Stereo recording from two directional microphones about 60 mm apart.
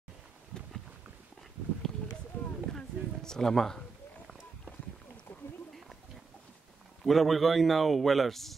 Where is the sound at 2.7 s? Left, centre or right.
Centre.